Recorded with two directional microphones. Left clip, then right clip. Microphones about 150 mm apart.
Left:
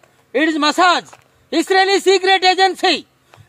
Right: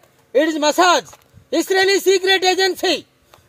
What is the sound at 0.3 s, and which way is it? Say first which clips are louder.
A man's voice: even; 25° left (ahead or behind).